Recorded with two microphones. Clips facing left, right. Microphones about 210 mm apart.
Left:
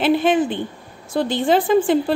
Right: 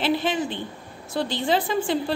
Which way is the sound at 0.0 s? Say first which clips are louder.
Left 7 dB; 50° left (ahead or behind).